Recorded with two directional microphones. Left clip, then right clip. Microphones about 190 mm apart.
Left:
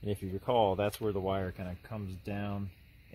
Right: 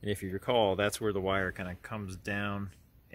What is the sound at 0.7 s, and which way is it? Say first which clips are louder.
Speech: right 2 dB; 35° right (ahead or behind).